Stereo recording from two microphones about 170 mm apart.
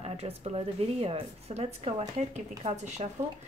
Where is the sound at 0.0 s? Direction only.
35° right (ahead or behind).